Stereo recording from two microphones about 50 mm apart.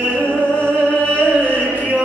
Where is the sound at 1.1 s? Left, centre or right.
Left.